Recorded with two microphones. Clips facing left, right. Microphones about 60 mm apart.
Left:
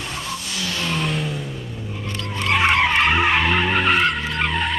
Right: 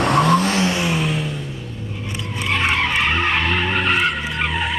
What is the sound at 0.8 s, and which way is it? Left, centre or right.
Vehicle, centre.